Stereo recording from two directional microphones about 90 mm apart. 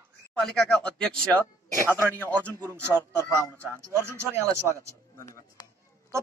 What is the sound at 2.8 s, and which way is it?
Speech, 25° right (ahead or behind).